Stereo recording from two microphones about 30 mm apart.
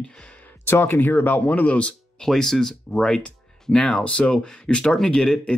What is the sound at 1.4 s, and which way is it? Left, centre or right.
Speech, left.